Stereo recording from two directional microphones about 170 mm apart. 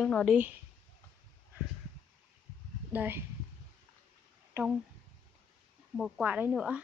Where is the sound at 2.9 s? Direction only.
10° right (ahead or behind).